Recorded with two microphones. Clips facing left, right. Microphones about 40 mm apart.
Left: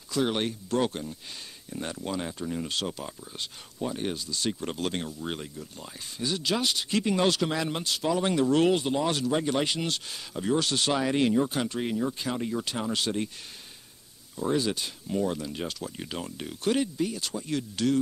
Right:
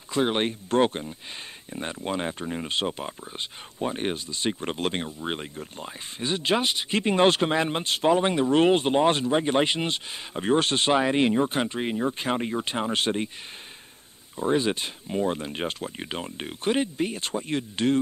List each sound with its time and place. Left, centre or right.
0.1 s speech: right
14.3 s speech: right